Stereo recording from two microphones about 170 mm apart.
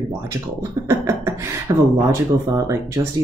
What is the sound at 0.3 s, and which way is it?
Speech, 15° right (ahead or behind).